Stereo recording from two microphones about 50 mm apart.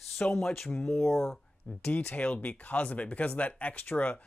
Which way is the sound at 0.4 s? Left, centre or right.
Centre.